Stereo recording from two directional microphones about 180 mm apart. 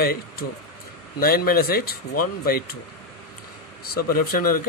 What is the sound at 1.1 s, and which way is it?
Speech, 55° left (ahead or behind).